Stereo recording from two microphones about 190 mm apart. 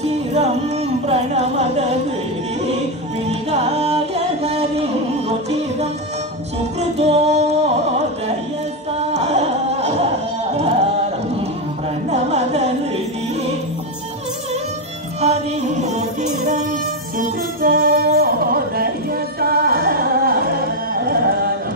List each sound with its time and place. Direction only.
0.0 s music: 35° right (ahead or behind)
3.3 s music: 35° right (ahead or behind)
6.8 s music: 35° right (ahead or behind)
9.1 s music: 35° right (ahead or behind)
12.1 s carnatic music: 35° right (ahead or behind)
15.1 s music: 35° right (ahead or behind)
17.6 s music: 50° right (ahead or behind)